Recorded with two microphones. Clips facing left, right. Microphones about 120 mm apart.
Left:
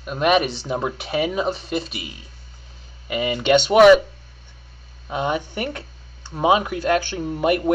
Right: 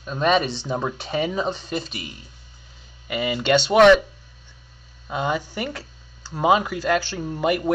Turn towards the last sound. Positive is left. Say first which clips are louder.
# left 2 dB
turn(degrees=5)  # may be behind; listen again after turning